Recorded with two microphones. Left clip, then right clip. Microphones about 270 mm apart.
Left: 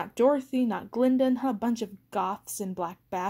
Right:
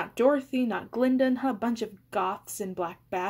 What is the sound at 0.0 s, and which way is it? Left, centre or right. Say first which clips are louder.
Speech: even; left.